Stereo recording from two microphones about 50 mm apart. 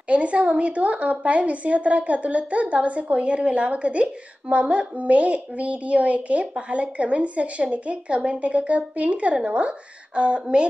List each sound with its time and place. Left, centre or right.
0.1 s a woman's voice: right